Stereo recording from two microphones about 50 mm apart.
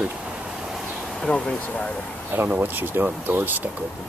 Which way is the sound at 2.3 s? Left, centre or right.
Right.